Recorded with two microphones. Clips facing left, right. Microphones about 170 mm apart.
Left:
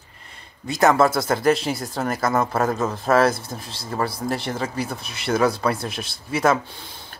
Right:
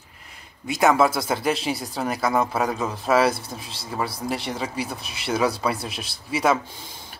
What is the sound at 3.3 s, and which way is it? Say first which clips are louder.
Speech: left 2 dB; 50° left (ahead or behind).